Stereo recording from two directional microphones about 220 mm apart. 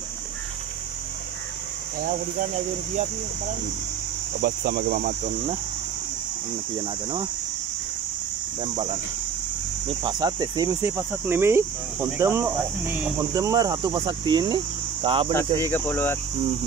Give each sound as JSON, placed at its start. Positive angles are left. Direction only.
{"t": 4.6, "sound": "speech", "side_deg": -45}
{"t": 10.0, "sound": "speech", "side_deg": -20}
{"t": 15.0, "sound": "cricket", "side_deg": -25}
{"t": 15.3, "sound": "speech", "side_deg": 10}